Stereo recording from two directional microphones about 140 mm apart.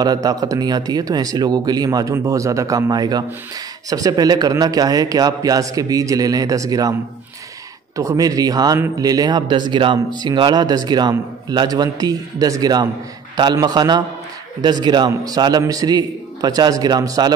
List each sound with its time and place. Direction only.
0.0 s a man's voice: 25° right (ahead or behind)